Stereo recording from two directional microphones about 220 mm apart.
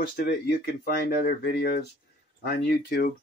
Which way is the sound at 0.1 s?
45° left (ahead or behind).